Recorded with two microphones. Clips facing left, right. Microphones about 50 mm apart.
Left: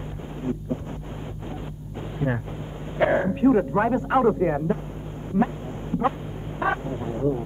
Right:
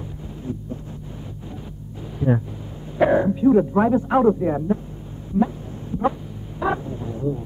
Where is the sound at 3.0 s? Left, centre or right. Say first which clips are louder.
Right 3 dB; left.